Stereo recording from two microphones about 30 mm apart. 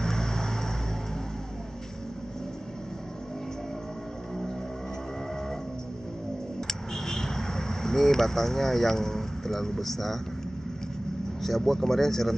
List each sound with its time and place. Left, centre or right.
0.0 s vehicle: centre
6.7 s vehicle: centre
11.4 s speech: centre